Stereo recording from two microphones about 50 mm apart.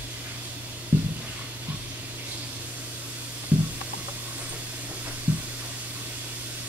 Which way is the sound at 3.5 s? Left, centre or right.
Right.